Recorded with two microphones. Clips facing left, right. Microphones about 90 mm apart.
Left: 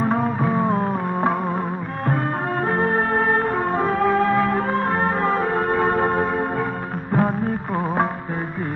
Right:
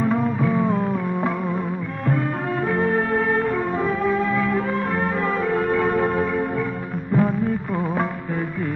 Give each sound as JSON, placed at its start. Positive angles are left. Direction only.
{"t": 0.0, "sound": "music", "side_deg": 35}
{"t": 2.0, "sound": "music", "side_deg": 45}
{"t": 7.2, "sound": "music of bollywood", "side_deg": 40}